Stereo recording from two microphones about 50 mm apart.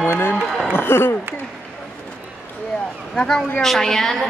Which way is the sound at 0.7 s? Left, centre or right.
Left.